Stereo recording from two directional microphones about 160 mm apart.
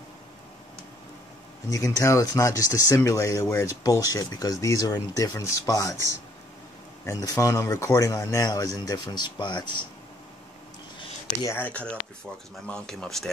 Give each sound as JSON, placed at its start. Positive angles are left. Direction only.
{"t": 1.7, "sound": "speech", "side_deg": 20}
{"t": 7.1, "sound": "speech", "side_deg": 20}
{"t": 11.4, "sound": "speech", "side_deg": 10}